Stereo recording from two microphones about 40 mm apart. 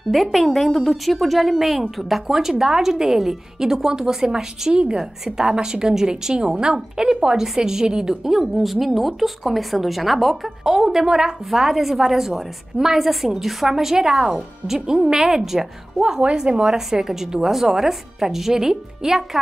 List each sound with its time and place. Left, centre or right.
0.1 s a woman's voice: centre
10.6 s a woman's voice: centre
16.0 s a woman's voice: right